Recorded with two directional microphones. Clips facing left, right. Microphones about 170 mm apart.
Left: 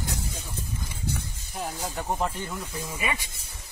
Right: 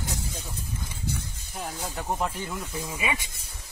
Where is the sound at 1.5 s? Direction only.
Centre (ahead or behind).